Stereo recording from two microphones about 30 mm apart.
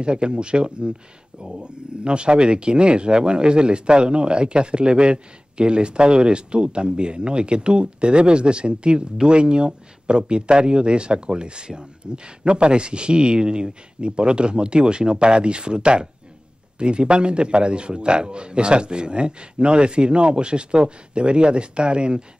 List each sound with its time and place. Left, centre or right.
0.0 s speech: right